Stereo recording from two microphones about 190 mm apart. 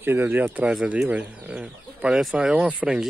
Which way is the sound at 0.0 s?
10° right (ahead or behind).